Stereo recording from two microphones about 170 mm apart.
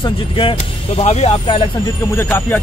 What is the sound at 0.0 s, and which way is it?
Speech, 30° left (ahead or behind).